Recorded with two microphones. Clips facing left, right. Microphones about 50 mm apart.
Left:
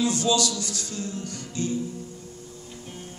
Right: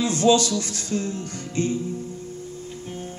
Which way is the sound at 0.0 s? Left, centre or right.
Right.